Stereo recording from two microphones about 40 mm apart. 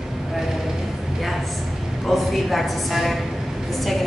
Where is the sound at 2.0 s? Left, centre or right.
Centre.